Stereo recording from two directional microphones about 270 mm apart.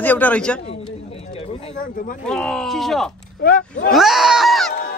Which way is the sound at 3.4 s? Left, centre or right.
Left.